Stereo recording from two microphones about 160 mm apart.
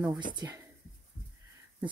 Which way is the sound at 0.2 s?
30° right (ahead or behind).